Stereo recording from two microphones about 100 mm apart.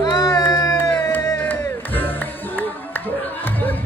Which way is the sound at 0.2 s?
30° left (ahead or behind).